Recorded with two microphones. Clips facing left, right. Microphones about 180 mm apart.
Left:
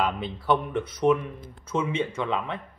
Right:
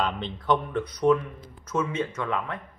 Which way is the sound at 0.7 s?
20° left (ahead or behind).